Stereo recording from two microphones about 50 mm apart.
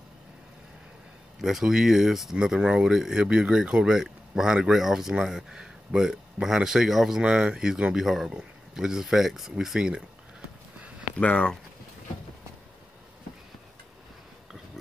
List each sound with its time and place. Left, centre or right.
1.4 s speech: centre
7.2 s speech: centre
9.8 s speech: centre
11.1 s speech: left